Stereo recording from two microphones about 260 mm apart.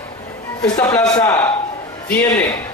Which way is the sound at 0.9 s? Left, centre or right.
Centre.